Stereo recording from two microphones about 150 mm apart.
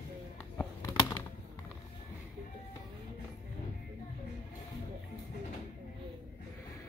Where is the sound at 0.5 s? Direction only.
20° left (ahead or behind).